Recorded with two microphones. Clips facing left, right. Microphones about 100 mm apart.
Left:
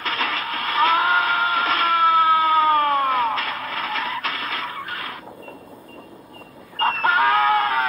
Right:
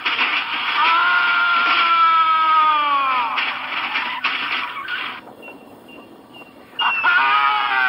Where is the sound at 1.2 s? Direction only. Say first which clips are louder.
Right 3 dB; 65° right (ahead or behind).